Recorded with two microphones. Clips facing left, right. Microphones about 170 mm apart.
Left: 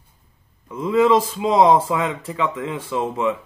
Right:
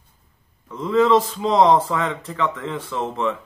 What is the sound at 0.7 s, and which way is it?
Speech, 10° left (ahead or behind).